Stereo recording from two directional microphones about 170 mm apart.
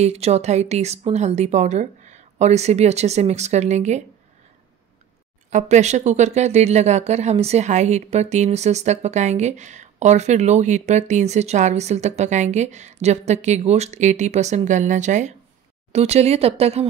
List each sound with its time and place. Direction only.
0.0 s speech: 40° right (ahead or behind)
5.5 s speech: 45° right (ahead or behind)